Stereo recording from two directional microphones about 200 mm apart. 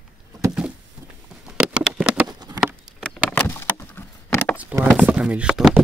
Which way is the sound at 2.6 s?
Centre (ahead or behind).